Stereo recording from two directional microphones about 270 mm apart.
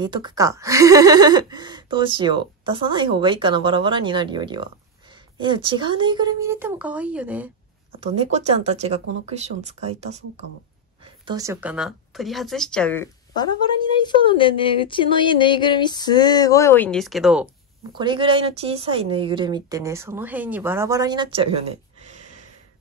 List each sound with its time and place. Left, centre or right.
0.0 s speech: centre
8.0 s speech: right
11.2 s speech: centre
17.9 s speech: centre